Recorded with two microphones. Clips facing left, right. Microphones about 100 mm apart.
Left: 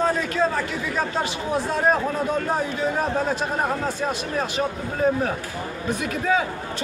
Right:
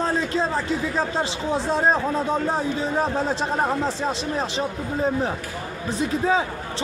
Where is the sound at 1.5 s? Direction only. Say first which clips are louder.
Even; 25° right (ahead or behind).